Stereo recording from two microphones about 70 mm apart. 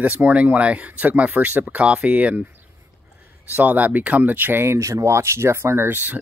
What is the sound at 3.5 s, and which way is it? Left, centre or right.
Speech, right.